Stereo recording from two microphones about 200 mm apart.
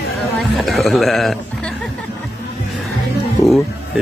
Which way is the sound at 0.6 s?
Centre (ahead or behind).